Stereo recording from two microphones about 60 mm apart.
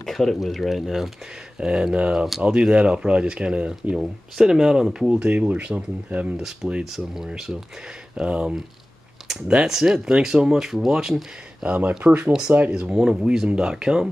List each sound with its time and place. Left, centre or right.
0.0 s speech: centre
1.6 s speech: centre
6.3 s speech: centre
11.6 s speech: centre